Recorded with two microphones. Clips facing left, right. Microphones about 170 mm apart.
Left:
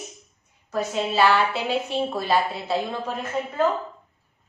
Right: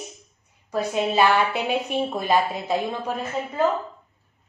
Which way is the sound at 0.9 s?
15° right (ahead or behind).